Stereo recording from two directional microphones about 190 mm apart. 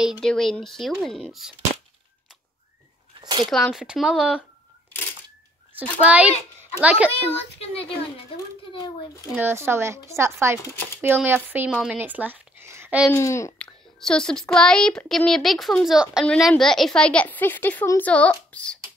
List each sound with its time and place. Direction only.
0.2 s a child's voice: centre (ahead or behind)
3.2 s a sound: 25° right (ahead or behind)
3.4 s a child's voice: centre (ahead or behind)
6.0 s speech: 5° right (ahead or behind)
7.1 s a child's voice: 30° left (ahead or behind)
9.3 s speech: 10° right (ahead or behind)
13.1 s a child's voice: 15° left (ahead or behind)
13.9 s a child's voice: 5° left (ahead or behind)